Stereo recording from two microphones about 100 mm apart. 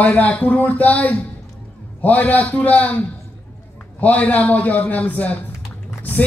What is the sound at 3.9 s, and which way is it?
A man's voice, 15° left (ahead or behind).